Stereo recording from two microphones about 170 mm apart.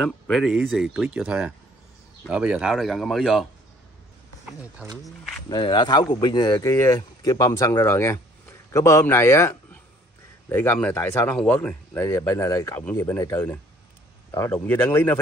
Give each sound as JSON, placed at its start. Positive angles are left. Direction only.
{"t": 0.0, "sound": "speech", "side_deg": 0}
{"t": 4.8, "sound": "speech", "side_deg": -5}
{"t": 5.5, "sound": "speech", "side_deg": 25}